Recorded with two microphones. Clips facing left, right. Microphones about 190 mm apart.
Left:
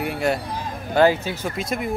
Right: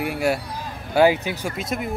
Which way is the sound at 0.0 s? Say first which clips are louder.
Even; 5° right (ahead or behind).